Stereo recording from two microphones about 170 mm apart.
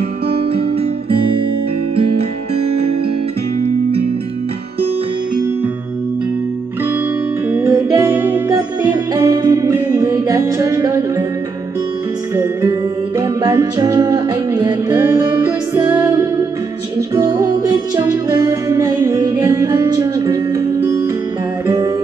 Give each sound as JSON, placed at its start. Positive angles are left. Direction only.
{"t": 1.1, "sound": "guitar", "side_deg": -30}
{"t": 7.5, "sound": "music", "side_deg": -15}
{"t": 13.4, "sound": "music", "side_deg": -20}